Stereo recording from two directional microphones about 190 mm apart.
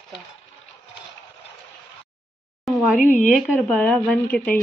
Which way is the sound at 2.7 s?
Centre (ahead or behind).